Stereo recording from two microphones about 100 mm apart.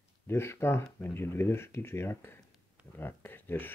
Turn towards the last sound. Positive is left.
turn(degrees=20)  # may be behind; listen again after turning